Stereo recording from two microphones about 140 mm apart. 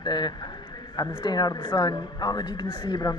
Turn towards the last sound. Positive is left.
turn(degrees=30)  # may be behind; listen again after turning